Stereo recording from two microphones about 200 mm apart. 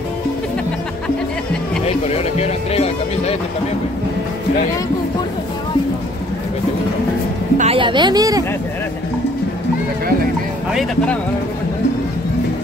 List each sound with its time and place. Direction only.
2.0 s speech: 30° left (ahead or behind)
7.5 s speech: 30° right (ahead or behind)
10.7 s speech: centre (ahead or behind)